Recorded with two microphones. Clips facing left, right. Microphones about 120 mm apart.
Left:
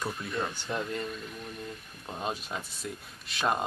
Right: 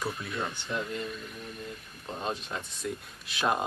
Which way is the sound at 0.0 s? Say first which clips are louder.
Left 1 dB; centre (ahead or behind).